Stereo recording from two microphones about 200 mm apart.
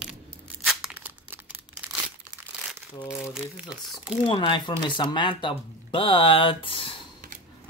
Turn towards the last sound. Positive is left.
turn(degrees=25)  # may be behind; listen again after turning